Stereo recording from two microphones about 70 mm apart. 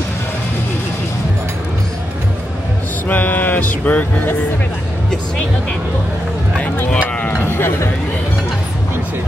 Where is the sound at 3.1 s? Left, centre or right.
Left.